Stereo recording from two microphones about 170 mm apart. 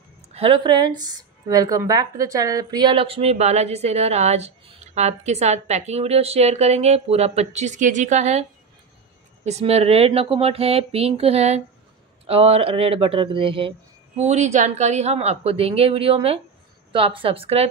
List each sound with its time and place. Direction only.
0.3 s speech: 30° right (ahead or behind)